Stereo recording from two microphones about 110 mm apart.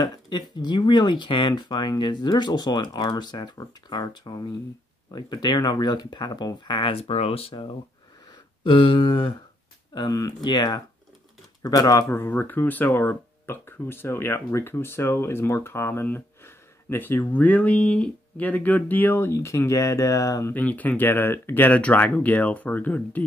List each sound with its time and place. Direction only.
0.6 s speech: 40° left (ahead or behind)
8.6 s a sound: 50° left (ahead or behind)
9.9 s speech: 30° left (ahead or behind)
12.2 s speech: 15° left (ahead or behind)
20.5 s speech: 15° left (ahead or behind)